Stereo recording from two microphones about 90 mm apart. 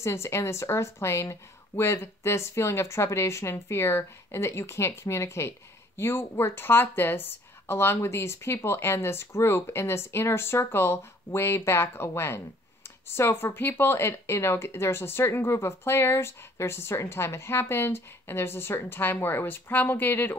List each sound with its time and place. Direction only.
0.0 s speech: 30° left (ahead or behind)